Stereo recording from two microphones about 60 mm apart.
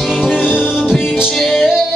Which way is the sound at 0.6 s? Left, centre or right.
Centre.